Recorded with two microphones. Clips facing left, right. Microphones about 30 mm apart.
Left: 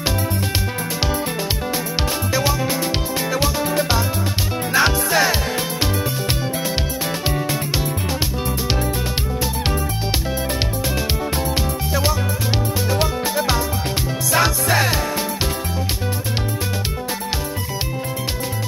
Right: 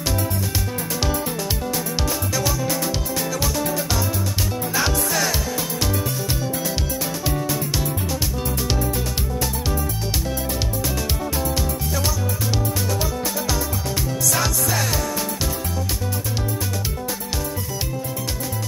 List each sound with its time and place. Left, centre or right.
2.3 s music: left
4.7 s music: left
7.2 s music: left
11.9 s music: left